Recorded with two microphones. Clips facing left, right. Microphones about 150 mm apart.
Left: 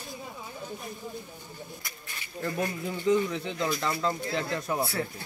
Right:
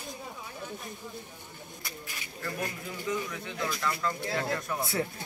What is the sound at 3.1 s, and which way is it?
Speech, 25° left (ahead or behind).